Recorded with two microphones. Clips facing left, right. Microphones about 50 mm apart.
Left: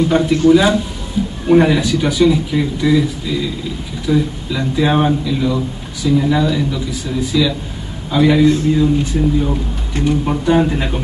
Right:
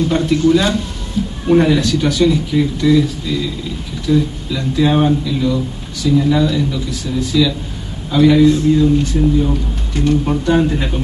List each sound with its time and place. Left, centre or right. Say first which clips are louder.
0.1 s speech: left 2 dB; centre
1.2 s a sound: left 1 dB; centre
1.5 s speech: left 1 dB; centre